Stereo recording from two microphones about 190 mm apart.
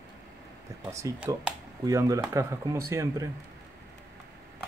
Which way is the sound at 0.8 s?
15° right (ahead or behind).